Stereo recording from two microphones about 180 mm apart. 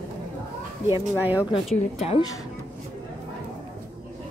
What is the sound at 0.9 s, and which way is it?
Speech, 10° right (ahead or behind).